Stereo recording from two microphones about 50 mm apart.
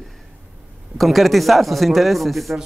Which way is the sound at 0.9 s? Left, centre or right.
Centre.